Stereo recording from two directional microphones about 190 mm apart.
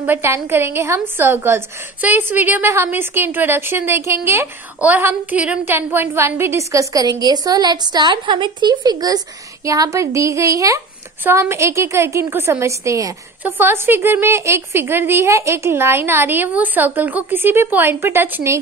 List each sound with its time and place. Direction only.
0.0 s a woman's voice: 10° right (ahead or behind)